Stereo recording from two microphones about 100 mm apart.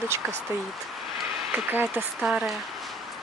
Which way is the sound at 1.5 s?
20° right (ahead or behind).